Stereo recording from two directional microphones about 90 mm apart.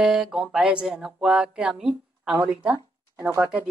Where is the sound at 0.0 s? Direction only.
5° right (ahead or behind).